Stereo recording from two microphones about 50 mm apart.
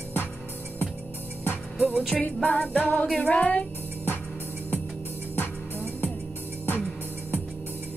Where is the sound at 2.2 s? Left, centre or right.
Left.